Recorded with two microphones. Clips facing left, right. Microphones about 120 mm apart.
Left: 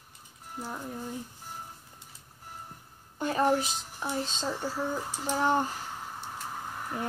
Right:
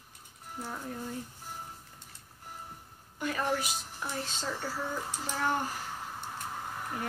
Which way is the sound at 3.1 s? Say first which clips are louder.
Left 6 dB; 30° left (ahead or behind).